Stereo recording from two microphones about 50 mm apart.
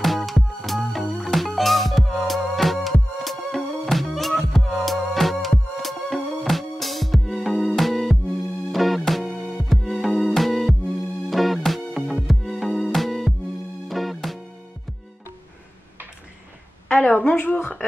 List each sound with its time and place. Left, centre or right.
0.0 s music: centre
16.9 s a woman's voice: left
17.6 s a sound: centre